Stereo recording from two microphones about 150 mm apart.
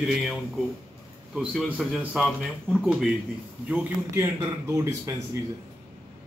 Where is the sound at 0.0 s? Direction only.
5° right (ahead or behind).